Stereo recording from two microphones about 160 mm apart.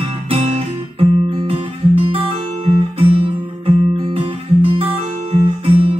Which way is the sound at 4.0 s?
35° right (ahead or behind).